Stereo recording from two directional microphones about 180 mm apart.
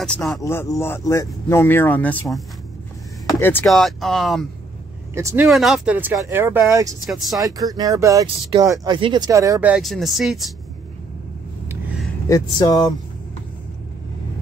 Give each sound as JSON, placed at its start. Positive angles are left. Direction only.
{"t": 0.0, "sound": "speech", "side_deg": 0}
{"t": 0.4, "sound": "speech", "side_deg": 15}
{"t": 3.6, "sound": "speech", "side_deg": 0}
{"t": 5.1, "sound": "speech", "side_deg": -15}
{"t": 5.5, "sound": "speech", "side_deg": 0}
{"t": 7.1, "sound": "speech", "side_deg": 0}
{"t": 7.3, "sound": "speech", "side_deg": -20}
{"t": 9.7, "sound": "speech", "side_deg": 0}
{"t": 11.7, "sound": "a sound", "side_deg": -5}
{"t": 12.3, "sound": "speech", "side_deg": 20}